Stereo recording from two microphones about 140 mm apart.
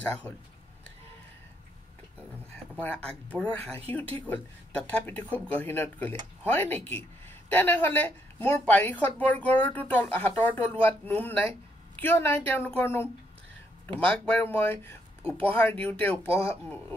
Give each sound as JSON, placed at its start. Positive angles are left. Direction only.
{"t": 0.3, "sound": "speech", "side_deg": 10}
{"t": 2.8, "sound": "speech", "side_deg": 10}